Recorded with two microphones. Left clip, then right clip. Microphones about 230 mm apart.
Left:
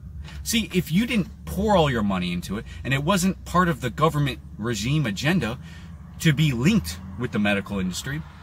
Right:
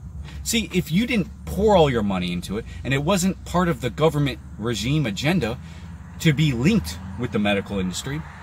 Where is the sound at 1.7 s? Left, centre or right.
Centre.